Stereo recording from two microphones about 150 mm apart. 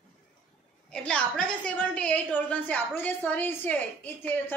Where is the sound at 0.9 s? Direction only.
5° left (ahead or behind).